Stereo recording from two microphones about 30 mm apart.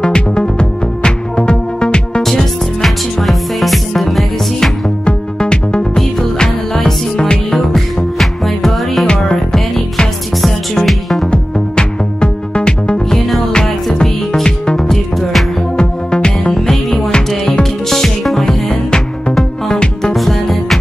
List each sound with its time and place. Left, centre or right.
0.0 s music: left
2.3 s music: centre
5.4 s music: left
7.5 s music: centre
9.0 s music: left
10.9 s music: centre
11.2 s music: left
14.8 s music: centre
15.8 s music: left
17.8 s music: centre
18.7 s music: left
20.2 s music: centre